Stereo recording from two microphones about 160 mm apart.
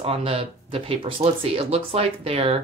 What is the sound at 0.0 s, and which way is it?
Speech, 40° right (ahead or behind).